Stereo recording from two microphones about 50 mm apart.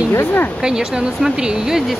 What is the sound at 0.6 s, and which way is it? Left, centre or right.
Speech, centre.